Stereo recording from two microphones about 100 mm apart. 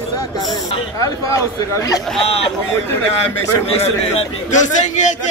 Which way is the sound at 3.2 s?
90° left.